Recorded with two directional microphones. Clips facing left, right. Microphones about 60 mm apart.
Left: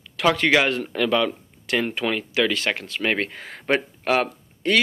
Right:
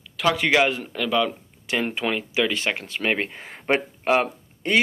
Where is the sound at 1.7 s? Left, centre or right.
Centre.